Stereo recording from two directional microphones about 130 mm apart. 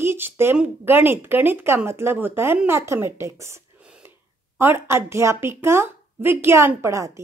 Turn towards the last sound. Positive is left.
turn(degrees=-25)  # may be behind; listen again after turning